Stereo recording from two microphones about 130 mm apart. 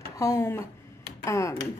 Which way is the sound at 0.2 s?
20° left (ahead or behind).